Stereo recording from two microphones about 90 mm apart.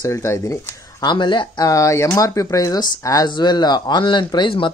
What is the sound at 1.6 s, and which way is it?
Speech, 40° left (ahead or behind).